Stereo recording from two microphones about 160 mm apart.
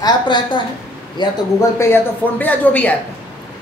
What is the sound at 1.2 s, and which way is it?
Speech, 30° left (ahead or behind).